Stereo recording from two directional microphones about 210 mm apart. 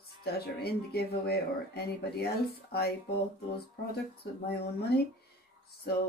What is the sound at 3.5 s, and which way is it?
Speech, 50° left (ahead or behind).